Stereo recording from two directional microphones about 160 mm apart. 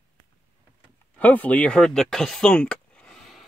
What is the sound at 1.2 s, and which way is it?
Speech, 10° left (ahead or behind).